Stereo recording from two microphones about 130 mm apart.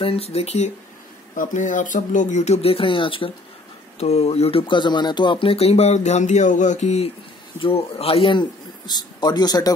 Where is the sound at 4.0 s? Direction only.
55° left (ahead or behind).